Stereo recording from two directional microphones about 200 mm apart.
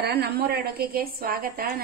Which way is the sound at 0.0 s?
55° right (ahead or behind).